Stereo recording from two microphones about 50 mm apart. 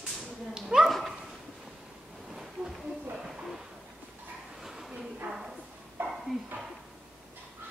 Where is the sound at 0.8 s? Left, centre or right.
Centre.